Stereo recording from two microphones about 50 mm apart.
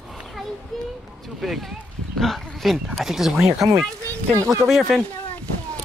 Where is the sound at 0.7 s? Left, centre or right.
Centre.